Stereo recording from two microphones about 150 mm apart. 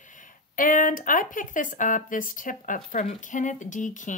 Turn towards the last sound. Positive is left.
turn(degrees=55)  # may be behind; listen again after turning